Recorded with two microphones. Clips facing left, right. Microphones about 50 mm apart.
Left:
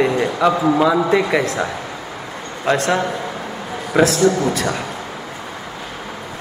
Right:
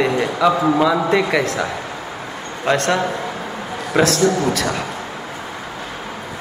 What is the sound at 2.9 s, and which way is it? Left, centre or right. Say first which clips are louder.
Speech: even; centre.